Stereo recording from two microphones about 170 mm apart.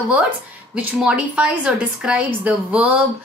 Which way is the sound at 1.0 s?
5° right (ahead or behind).